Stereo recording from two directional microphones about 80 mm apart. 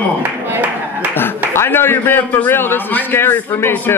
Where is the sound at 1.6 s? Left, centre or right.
Left.